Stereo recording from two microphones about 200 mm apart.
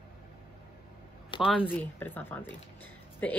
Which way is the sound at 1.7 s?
10° left (ahead or behind).